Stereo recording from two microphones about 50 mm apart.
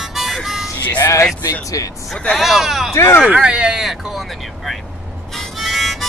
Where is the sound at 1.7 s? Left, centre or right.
Left.